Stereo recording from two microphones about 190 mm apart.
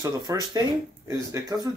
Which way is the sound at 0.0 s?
20° right (ahead or behind).